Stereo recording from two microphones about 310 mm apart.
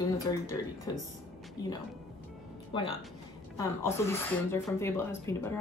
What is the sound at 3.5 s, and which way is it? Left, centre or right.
Speech, centre.